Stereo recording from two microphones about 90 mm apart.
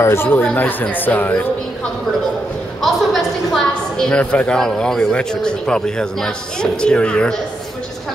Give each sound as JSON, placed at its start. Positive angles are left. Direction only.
{"t": 0.0, "sound": "speech", "side_deg": 25}
{"t": 0.4, "sound": "speech", "side_deg": 15}
{"t": 2.8, "sound": "a woman's voice", "side_deg": 0}
{"t": 4.1, "sound": "a man's voice", "side_deg": 15}